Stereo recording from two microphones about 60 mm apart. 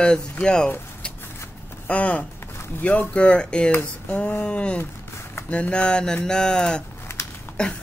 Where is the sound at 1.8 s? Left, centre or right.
Left.